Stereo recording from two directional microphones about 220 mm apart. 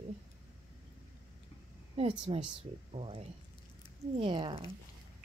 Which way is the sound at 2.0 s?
25° right (ahead or behind).